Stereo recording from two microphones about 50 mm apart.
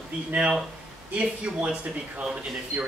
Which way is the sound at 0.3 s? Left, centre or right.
Right.